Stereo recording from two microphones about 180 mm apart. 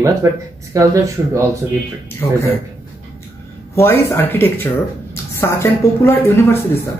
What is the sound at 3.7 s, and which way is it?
A woman's voice, 15° left (ahead or behind).